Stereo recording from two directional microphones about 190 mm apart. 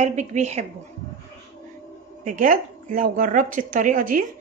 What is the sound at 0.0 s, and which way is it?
Speech, 40° right (ahead or behind).